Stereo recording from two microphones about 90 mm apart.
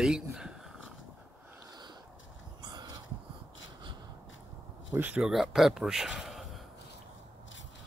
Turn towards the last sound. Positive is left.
turn(degrees=-5)  # may be behind; listen again after turning